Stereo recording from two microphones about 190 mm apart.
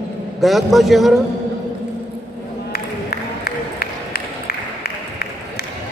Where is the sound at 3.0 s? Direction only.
55° left (ahead or behind).